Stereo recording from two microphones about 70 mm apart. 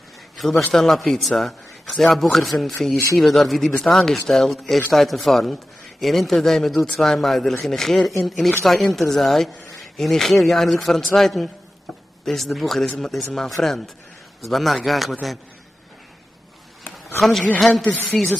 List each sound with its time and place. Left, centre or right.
0.4 s a man's voice: centre
16.8 s a sound: centre
17.6 s a man's voice: centre
17.8 s speech: left